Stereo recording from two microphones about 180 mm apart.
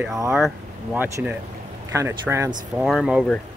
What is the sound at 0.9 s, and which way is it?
Speech, 10° right (ahead or behind).